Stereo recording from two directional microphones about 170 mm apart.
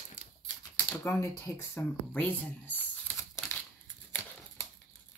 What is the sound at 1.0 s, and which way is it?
Speech, 15° left (ahead or behind).